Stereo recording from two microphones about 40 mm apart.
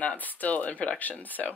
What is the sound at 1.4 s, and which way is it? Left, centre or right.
Speech, left.